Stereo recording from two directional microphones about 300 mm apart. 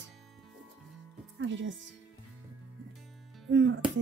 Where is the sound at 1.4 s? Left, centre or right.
Right.